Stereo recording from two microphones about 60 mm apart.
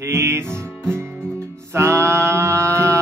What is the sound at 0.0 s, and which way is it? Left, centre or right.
Music, right.